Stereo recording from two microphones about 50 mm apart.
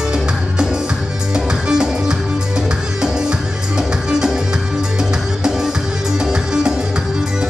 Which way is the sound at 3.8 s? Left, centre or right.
Centre.